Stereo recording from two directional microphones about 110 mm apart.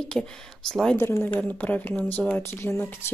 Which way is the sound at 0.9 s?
20° left (ahead or behind).